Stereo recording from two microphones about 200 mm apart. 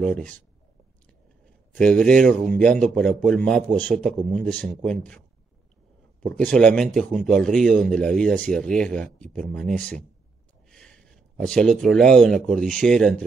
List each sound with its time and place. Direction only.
0.0 s a man's voice: 5° left (ahead or behind)
1.4 s a sound: 5° left (ahead or behind)
2.5 s a man's voice: 5° left (ahead or behind)
6.2 s a man's voice: 5° left (ahead or behind)